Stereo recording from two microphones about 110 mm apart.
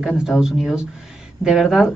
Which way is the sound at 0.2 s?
5° right (ahead or behind).